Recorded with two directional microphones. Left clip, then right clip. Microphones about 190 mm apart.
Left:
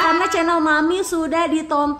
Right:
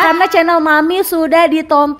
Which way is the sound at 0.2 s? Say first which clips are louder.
Right 7 dB; 30° right (ahead or behind).